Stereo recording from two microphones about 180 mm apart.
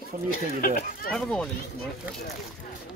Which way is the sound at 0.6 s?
50° left (ahead or behind).